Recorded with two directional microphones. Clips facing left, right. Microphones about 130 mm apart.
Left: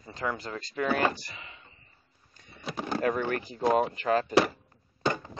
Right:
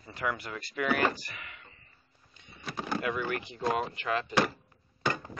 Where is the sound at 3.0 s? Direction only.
40° left (ahead or behind).